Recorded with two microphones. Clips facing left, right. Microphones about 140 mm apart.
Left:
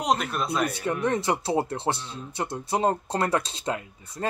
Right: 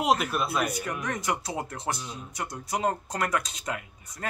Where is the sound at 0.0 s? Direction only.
5° right (ahead or behind).